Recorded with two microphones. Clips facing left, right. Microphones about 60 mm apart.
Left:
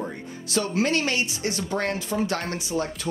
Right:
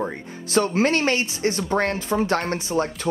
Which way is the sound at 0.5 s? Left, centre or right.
Right.